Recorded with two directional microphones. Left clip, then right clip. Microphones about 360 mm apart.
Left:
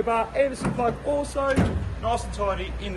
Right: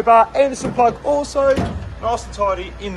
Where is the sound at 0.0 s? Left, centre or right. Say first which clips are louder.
Right 11 dB; centre.